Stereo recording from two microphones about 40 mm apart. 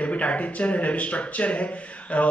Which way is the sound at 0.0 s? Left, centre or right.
Left.